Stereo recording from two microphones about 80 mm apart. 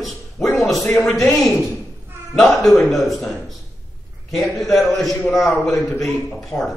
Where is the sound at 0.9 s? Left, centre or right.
Centre.